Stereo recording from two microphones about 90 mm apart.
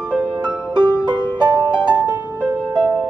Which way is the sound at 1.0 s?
55° right (ahead or behind).